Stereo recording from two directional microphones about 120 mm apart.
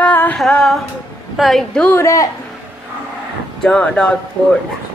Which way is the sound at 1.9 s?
25° left (ahead or behind).